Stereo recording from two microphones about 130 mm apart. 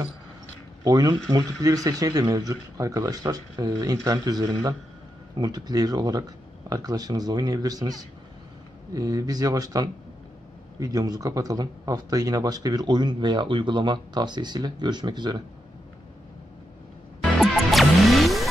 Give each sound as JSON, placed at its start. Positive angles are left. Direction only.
{"t": 0.8, "sound": "speech", "side_deg": -30}
{"t": 17.4, "sound": "music", "side_deg": 0}